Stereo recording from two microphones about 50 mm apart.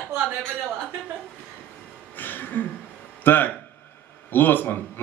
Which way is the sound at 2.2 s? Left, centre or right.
Left.